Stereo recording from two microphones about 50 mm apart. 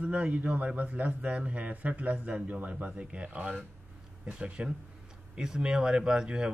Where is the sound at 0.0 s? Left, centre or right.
Right.